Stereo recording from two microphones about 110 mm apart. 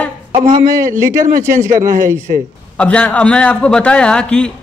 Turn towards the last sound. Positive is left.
turn(degrees=10)  # may be behind; listen again after turning